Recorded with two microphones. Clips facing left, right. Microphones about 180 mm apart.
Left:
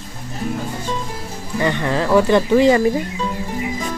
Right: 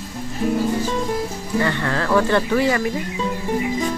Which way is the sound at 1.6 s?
15° left (ahead or behind).